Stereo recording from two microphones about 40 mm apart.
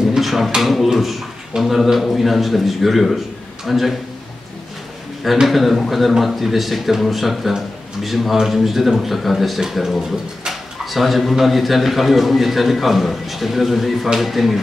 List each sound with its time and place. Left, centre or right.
0.2 s a sound: centre
0.6 s speech: centre
5.5 s speech: centre